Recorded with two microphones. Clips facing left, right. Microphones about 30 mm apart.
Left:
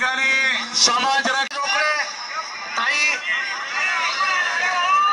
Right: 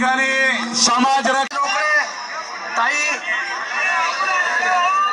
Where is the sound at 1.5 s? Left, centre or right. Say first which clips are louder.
Right 3 dB; left.